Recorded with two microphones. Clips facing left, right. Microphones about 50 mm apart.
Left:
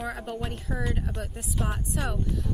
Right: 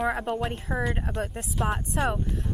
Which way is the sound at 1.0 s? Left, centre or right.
Right.